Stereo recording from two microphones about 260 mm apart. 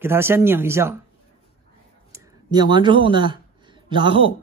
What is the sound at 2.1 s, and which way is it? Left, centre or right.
Speech, centre.